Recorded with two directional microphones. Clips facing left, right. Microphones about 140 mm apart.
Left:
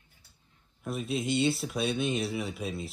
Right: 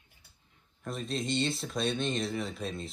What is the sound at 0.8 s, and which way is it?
Speech, 5° left (ahead or behind).